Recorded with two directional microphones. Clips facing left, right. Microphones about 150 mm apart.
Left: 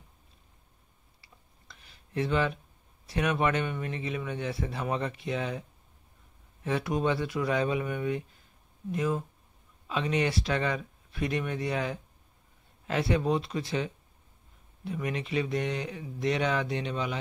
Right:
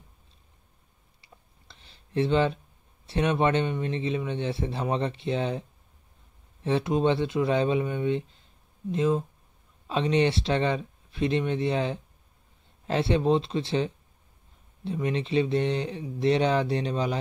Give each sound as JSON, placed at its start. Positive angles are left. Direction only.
{"t": 1.2, "sound": "clicking", "side_deg": -25}
{"t": 3.1, "sound": "speech", "side_deg": -25}